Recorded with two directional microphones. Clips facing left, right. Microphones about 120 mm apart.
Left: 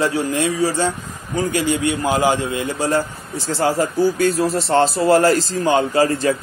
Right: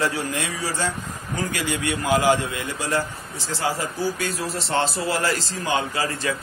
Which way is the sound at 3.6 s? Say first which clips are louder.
Left 8 dB; 45° left (ahead or behind).